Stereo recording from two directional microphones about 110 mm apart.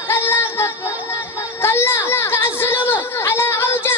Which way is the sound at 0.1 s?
20° left (ahead or behind).